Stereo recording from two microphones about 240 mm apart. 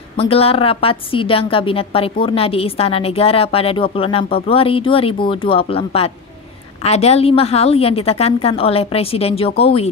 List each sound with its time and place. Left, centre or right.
0.2 s a woman's voice: left